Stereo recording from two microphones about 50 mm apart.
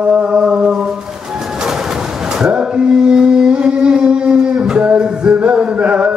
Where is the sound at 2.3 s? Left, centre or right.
Centre.